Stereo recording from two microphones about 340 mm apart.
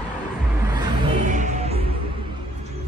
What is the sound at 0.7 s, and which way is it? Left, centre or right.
Music, centre.